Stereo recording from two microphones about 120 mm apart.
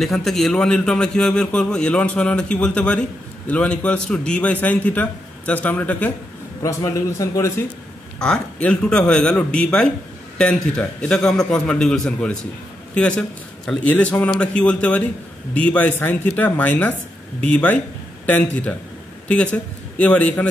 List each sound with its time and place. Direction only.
0.0 s a man's voice: centre (ahead or behind)
6.6 s a man's voice: 25° left (ahead or behind)
8.2 s a man's voice: 10° left (ahead or behind)